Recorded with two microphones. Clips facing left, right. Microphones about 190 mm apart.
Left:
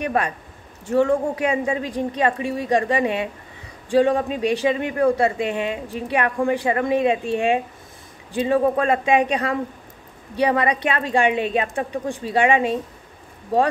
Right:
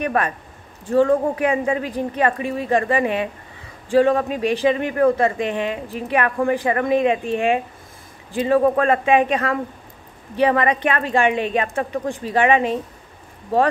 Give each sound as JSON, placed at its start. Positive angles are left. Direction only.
{"t": 0.0, "sound": "a woman's voice", "side_deg": 15}